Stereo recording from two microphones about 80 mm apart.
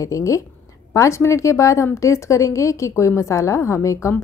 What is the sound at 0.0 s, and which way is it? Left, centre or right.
A woman's voice, left.